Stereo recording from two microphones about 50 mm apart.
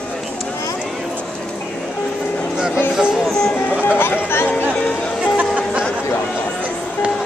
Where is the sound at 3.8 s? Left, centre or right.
Left.